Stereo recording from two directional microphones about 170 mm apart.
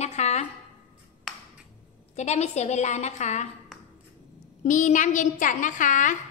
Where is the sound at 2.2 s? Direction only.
40° left (ahead or behind).